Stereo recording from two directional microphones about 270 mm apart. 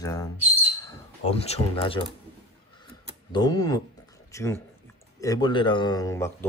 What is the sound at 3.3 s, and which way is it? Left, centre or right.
Speech, centre.